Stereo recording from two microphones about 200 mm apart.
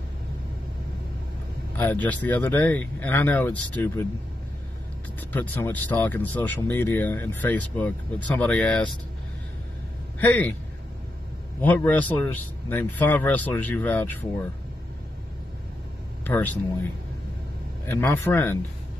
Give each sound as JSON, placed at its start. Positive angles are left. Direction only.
{"t": 1.8, "sound": "speech", "side_deg": 10}
{"t": 5.3, "sound": "speech", "side_deg": 10}
{"t": 10.1, "sound": "speech", "side_deg": 10}
{"t": 11.6, "sound": "speech", "side_deg": 10}
{"t": 16.3, "sound": "speech", "side_deg": 10}
{"t": 17.8, "sound": "speech", "side_deg": 10}